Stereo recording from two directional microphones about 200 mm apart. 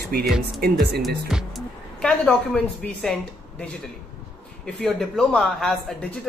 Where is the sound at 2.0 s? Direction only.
5° left (ahead or behind).